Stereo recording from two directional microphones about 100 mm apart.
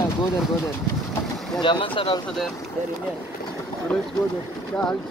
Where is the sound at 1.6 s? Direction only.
55° left (ahead or behind).